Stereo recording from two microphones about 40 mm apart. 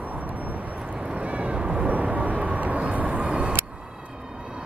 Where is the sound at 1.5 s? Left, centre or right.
Right.